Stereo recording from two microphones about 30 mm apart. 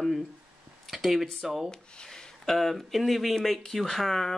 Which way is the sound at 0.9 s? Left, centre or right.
Centre.